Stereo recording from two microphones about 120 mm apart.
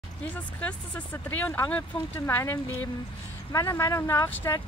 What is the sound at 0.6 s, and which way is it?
Speech, 10° left (ahead or behind).